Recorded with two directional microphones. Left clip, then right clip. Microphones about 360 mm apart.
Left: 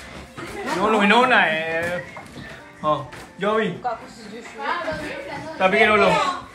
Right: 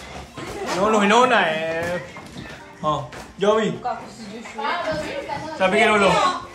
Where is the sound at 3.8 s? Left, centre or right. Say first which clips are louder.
Even; left.